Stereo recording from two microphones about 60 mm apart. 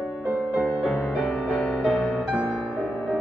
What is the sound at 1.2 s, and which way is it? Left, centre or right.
Music, centre.